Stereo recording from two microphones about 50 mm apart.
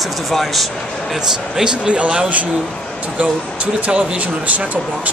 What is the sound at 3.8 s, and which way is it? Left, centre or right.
A man's voice, right.